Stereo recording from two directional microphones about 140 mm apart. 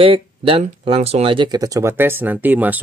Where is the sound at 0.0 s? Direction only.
40° right (ahead or behind).